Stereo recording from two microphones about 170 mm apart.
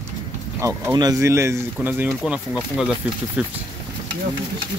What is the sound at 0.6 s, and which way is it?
Speech, 20° right (ahead or behind).